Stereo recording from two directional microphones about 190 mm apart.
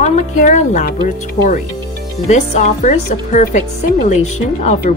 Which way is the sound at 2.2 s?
40° left (ahead or behind).